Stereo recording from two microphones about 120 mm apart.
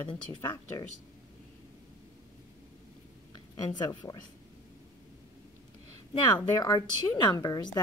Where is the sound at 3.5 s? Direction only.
35° left (ahead or behind).